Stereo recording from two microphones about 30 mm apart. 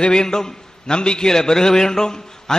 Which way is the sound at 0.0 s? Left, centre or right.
Left.